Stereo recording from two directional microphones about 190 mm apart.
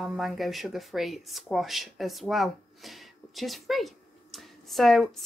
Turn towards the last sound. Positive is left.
turn(degrees=0)  # may be behind; listen again after turning